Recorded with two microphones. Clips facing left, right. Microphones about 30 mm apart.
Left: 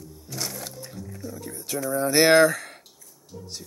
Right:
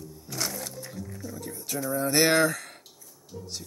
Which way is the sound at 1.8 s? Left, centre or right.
Left.